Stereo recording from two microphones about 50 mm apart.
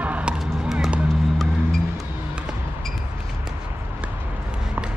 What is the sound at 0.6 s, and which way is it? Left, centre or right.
Music, centre.